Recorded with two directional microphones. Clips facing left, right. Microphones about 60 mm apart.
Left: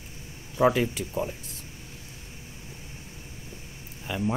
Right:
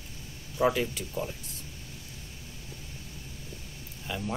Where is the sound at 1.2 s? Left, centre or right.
Left.